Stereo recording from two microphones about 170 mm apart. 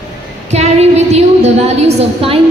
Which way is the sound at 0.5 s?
40° right (ahead or behind).